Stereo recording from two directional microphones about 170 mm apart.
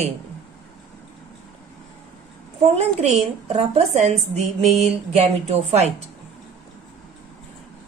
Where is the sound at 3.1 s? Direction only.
40° right (ahead or behind).